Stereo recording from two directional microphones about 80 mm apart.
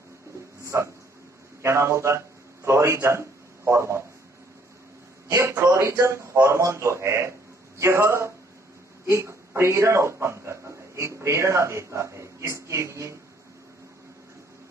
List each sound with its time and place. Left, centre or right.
0.7 s a man's voice: right
5.3 s a man's voice: right